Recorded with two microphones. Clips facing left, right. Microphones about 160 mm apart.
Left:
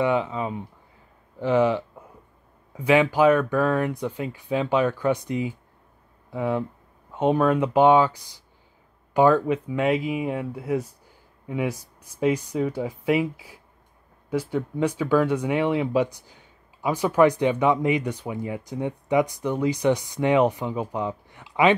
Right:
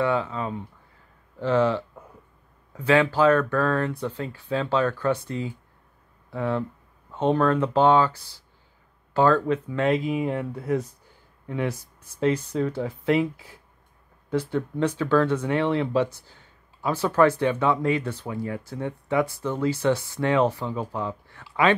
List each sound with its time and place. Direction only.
0.0 s speech: 15° left (ahead or behind)